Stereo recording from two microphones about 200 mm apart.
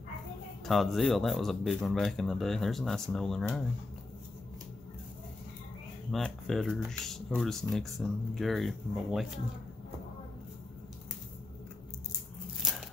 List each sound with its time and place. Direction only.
0.7 s speech: centre (ahead or behind)
6.1 s speech: centre (ahead or behind)